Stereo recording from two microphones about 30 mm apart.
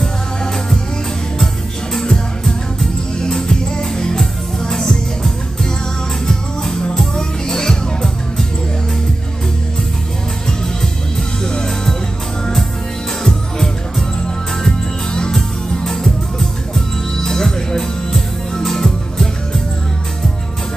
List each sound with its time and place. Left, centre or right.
2.0 s music: centre
11.4 s music: left
13.2 s music: centre
15.7 s music: centre